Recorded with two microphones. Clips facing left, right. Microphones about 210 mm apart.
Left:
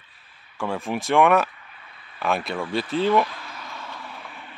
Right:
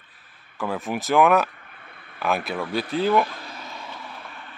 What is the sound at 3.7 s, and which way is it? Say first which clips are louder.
Vehicle: even; 15° right (ahead or behind).